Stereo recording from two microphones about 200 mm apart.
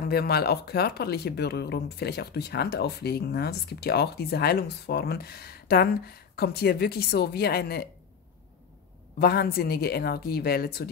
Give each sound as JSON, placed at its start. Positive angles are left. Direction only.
{"t": 0.1, "sound": "speech", "side_deg": 50}
{"t": 9.2, "sound": "speech", "side_deg": 50}